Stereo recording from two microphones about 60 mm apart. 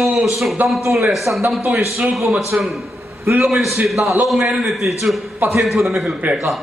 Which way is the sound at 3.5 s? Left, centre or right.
Centre.